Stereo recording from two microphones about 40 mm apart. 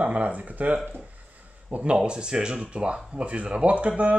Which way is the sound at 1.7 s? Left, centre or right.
Right.